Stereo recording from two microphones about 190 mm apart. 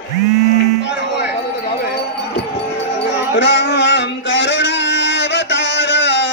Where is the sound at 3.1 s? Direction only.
70° left (ahead or behind).